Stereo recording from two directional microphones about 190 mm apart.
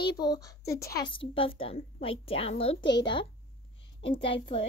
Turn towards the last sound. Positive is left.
turn(degrees=25)  # may be behind; listen again after turning